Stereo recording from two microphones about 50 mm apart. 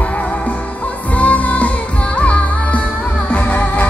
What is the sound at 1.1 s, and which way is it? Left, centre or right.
Music, left.